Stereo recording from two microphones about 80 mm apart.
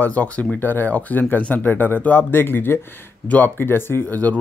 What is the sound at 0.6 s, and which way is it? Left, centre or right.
Speech, left.